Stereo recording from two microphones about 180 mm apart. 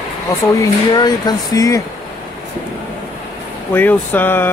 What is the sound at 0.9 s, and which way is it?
Speech, 20° left (ahead or behind).